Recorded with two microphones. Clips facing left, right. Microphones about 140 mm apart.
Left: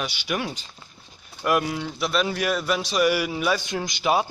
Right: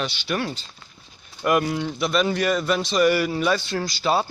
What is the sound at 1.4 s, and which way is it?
A man's voice, centre (ahead or behind).